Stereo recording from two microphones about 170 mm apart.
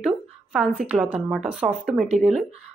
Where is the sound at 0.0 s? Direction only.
5° right (ahead or behind).